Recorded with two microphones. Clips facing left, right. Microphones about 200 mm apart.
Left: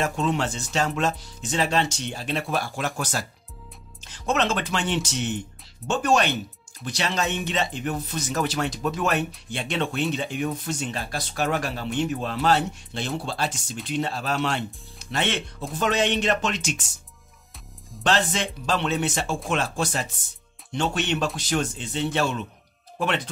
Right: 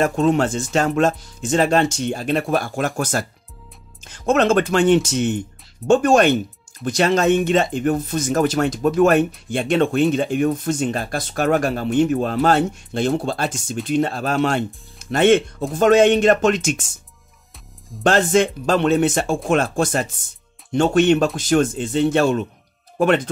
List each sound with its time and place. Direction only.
0.0 s speech: 50° right (ahead or behind)
18.0 s speech: 50° right (ahead or behind)